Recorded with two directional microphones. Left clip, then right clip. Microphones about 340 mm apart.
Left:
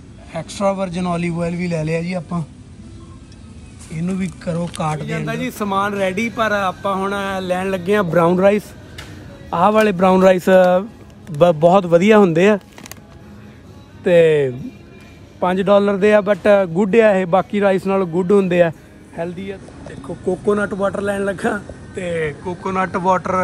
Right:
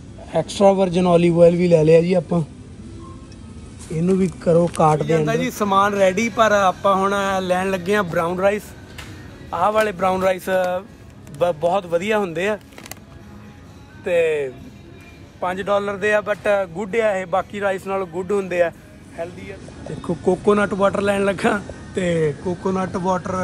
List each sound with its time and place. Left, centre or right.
0.5 s speech: centre
4.4 s speech: centre
8.2 s speech: left
14.0 s a man's voice: left
20.2 s a man's voice: centre